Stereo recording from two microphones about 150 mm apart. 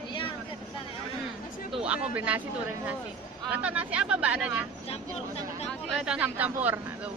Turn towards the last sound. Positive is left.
turn(degrees=-10)  # may be behind; listen again after turning